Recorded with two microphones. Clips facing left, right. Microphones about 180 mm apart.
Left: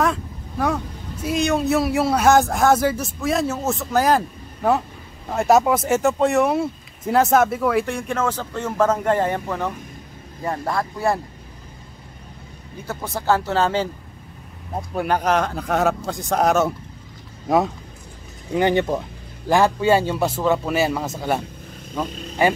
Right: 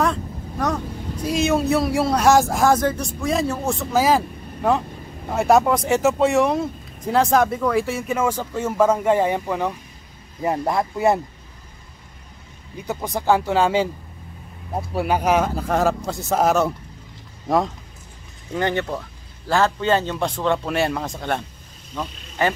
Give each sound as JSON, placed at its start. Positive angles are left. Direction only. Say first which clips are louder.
{"t": 0.0, "sound": "speech", "louder": "even", "side_deg": 5}
{"t": 5.3, "sound": "speech", "louder": "even", "side_deg": 0}
{"t": 12.8, "sound": "speech", "louder": "right 2 dB", "side_deg": -15}
{"t": 18.5, "sound": "a man's voice", "louder": "left 4 dB", "side_deg": 15}